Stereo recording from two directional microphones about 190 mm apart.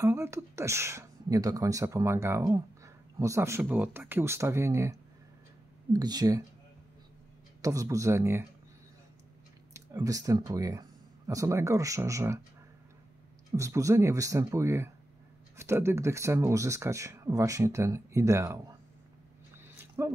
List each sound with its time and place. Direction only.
0.0 s speech: 15° right (ahead or behind)
5.9 s speech: 20° right (ahead or behind)
7.6 s speech: 15° right (ahead or behind)
9.8 s speech: 20° right (ahead or behind)
13.5 s speech: 15° right (ahead or behind)
19.5 s a sound: 10° right (ahead or behind)